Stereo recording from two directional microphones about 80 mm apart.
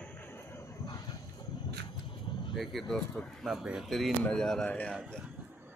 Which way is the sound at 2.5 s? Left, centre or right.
Centre.